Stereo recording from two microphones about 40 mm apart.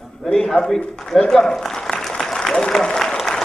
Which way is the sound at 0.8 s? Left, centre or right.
Left.